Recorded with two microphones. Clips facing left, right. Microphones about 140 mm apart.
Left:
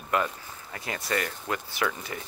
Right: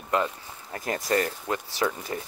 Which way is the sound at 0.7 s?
45° right (ahead or behind).